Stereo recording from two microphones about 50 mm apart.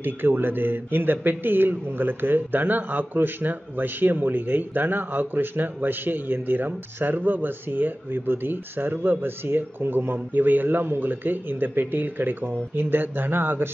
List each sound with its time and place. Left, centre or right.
0.0 s a man's voice: right